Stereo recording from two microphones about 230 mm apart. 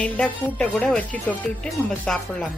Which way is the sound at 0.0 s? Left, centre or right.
Centre.